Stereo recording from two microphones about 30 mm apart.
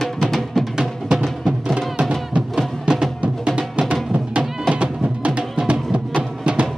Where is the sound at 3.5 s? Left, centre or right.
Right.